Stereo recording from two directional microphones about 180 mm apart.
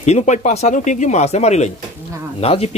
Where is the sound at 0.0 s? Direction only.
40° left (ahead or behind).